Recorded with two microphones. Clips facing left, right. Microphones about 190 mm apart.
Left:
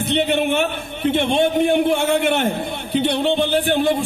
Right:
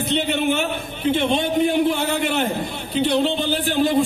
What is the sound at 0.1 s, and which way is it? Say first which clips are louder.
A man's voice: left 3 dB; 65° left (ahead or behind).